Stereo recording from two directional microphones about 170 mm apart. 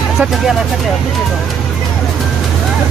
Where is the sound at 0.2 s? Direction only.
Centre (ahead or behind).